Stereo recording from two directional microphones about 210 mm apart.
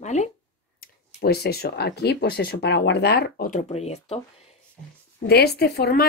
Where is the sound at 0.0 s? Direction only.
35° left (ahead or behind).